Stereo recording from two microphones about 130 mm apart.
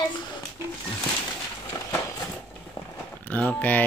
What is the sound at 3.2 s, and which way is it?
Speech, 10° left (ahead or behind).